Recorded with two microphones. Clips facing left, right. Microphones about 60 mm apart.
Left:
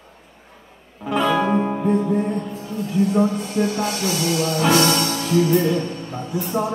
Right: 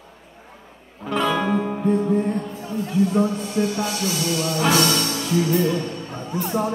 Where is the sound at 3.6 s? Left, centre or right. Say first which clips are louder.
Left 2 dB; left.